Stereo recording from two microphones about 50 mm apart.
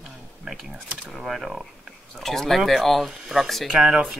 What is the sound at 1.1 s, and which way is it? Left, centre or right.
Speech, centre.